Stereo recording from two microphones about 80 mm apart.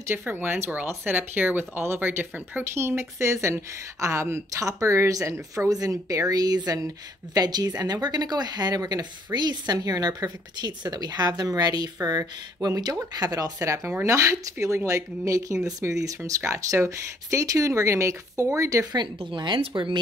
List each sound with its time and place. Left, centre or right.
0.0 s speech: right
18.9 s speech: right